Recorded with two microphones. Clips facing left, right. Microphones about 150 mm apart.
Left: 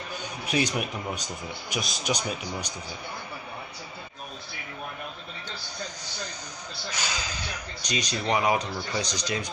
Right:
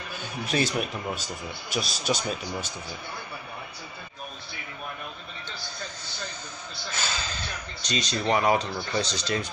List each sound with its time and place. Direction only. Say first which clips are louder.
0.1 s a man's voice: even; 15° left (ahead or behind)
6.9 s speech: right 1 dB; 15° left (ahead or behind)